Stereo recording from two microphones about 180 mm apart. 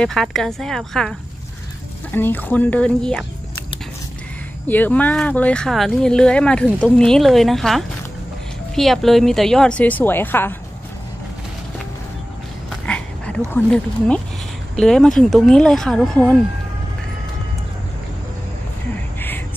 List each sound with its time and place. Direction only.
0.0 s speech: centre (ahead or behind)
2.1 s speech: 10° left (ahead or behind)
4.6 s speech: 10° left (ahead or behind)
12.6 s a sound: 5° left (ahead or behind)
13.5 s speech: 5° left (ahead or behind)
19.1 s a sound: 10° left (ahead or behind)